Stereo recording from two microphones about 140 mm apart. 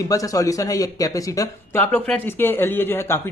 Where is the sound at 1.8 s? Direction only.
10° left (ahead or behind).